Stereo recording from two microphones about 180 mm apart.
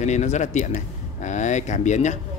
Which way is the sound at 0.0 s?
40° left (ahead or behind).